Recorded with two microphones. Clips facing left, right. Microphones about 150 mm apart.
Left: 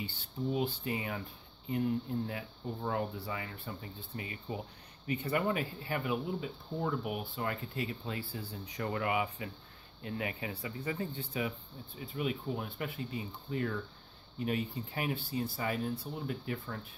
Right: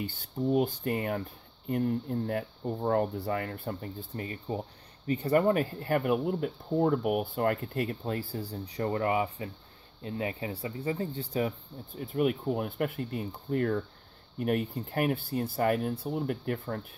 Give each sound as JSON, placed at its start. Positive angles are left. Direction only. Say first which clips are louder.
{"t": 0.5, "sound": "speech", "louder": "right 7 dB", "side_deg": -50}
{"t": 12.0, "sound": "speech", "louder": "right 8 dB", "side_deg": -55}